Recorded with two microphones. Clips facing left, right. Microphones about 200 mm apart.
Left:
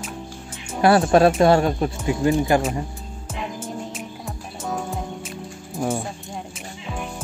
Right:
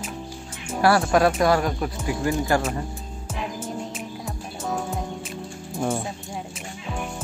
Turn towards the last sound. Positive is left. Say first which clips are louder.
# even
turn(degrees=5)  # may be behind; listen again after turning